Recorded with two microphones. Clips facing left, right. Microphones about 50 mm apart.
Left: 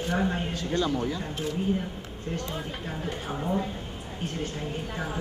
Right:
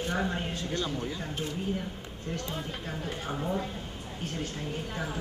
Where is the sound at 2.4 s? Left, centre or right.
Centre.